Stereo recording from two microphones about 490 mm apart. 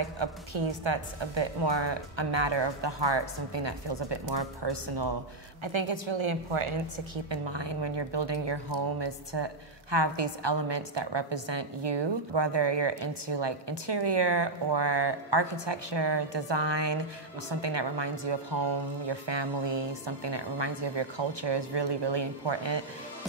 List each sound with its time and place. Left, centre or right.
0.0 s a woman's voice: right
5.6 s a woman's voice: right
7.2 s a woman's voice: right